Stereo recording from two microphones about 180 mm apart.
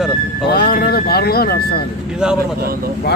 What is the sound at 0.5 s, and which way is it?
Speech, 55° left (ahead or behind).